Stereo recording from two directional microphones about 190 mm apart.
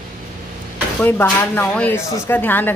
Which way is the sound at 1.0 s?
10° left (ahead or behind).